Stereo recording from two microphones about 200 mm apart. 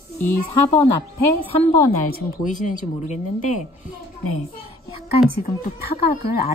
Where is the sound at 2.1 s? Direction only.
40° left (ahead or behind).